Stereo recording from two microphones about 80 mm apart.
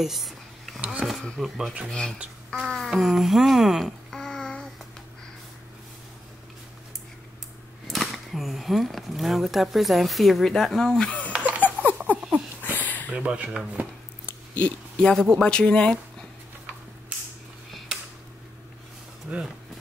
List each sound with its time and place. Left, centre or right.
0.0 s a sound: centre
0.7 s speech: centre
1.1 s speech: centre
7.8 s speech: centre
11.3 s laughter: centre
12.1 s wheeze: left
12.6 s a sound: left
13.1 s speech: centre
14.2 s a sound: centre
15.3 s speech: centre
19.3 s speech: centre